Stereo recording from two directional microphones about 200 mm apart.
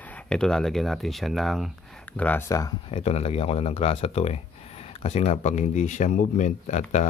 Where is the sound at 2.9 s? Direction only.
30° left (ahead or behind).